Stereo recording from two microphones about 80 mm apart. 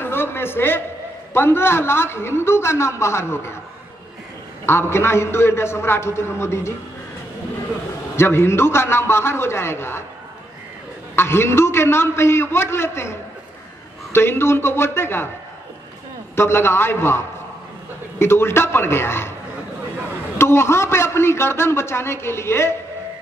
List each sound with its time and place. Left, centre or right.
0.0 s a sound: left
1.3 s a man's voice: left
4.6 s a man's voice: left
8.2 s a man's voice: left
11.1 s a man's voice: left
16.3 s a man's voice: left
18.2 s a man's voice: left
20.3 s a man's voice: left